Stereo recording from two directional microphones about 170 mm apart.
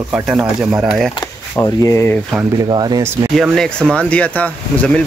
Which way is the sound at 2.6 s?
25° right (ahead or behind).